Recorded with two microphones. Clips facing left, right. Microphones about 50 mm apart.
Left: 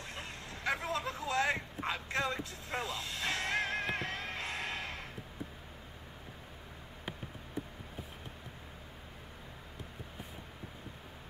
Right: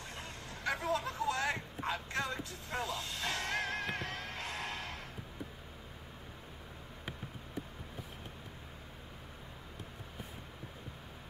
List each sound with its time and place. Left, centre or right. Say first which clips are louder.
0.1 s vehicle: left 2 dB; left
1.9 s music: left 2 dB; left